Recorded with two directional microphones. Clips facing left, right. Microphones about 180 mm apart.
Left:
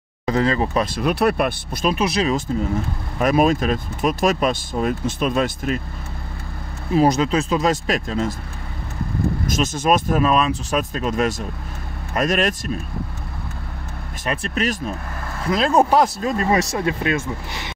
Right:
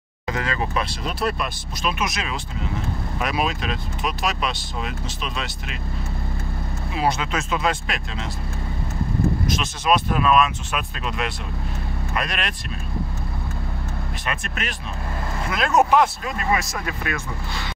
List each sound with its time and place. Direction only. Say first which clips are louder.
0.3 s speech: left 6 dB; 35° left (ahead or behind)
0.9 s speech: left 7 dB; 60° left (ahead or behind)
1.9 s speech: left 7 dB; 35° left (ahead or behind)
3.2 s speech: left 9 dB; 45° left (ahead or behind)
6.9 s speech: left 7 dB; 40° left (ahead or behind)
9.5 s speech: left 7 dB; 45° left (ahead or behind)
14.2 s speech: left 9 dB; 35° left (ahead or behind)